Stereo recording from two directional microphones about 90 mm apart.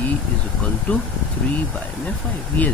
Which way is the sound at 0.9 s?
15° left (ahead or behind).